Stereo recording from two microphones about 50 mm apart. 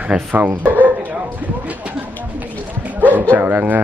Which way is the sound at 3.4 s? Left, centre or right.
Right.